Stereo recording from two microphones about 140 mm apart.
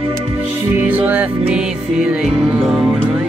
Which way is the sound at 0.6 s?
15° right (ahead or behind).